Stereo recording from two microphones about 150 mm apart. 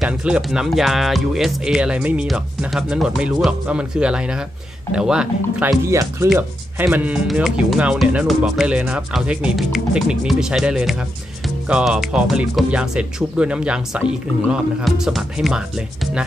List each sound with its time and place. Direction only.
0.0 s speech: 5° right (ahead or behind)
5.9 s speech: 20° right (ahead or behind)
6.2 s speech: 5° right (ahead or behind)